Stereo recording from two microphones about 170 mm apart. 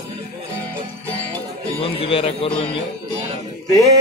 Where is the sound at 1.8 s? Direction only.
35° left (ahead or behind).